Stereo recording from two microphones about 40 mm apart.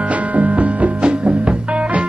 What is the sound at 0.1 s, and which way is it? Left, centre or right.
Music, right.